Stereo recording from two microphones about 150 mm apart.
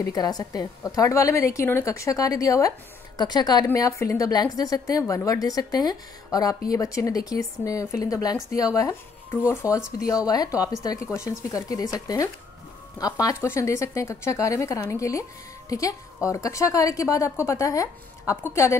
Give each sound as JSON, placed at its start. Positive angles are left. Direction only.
{"t": 0.1, "sound": "a woman's voice", "side_deg": 25}
{"t": 13.0, "sound": "a woman's voice", "side_deg": 20}
{"t": 16.3, "sound": "a woman's voice", "side_deg": 20}